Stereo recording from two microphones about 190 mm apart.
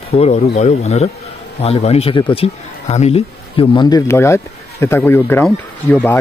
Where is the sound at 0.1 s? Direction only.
35° left (ahead or behind); by 5.4 s 10° left (ahead or behind).